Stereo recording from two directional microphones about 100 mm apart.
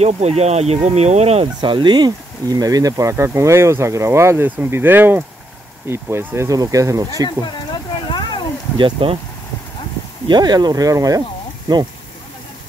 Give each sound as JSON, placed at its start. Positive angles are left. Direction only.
{"t": 0.0, "sound": "speech", "side_deg": -90}
{"t": 1.6, "sound": "speech", "side_deg": -50}
{"t": 8.1, "sound": "a sound", "side_deg": 50}
{"t": 8.7, "sound": "speech", "side_deg": -55}
{"t": 10.2, "sound": "speech", "side_deg": -45}